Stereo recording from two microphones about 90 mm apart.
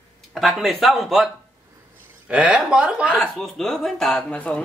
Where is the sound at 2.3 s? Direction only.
10° right (ahead or behind).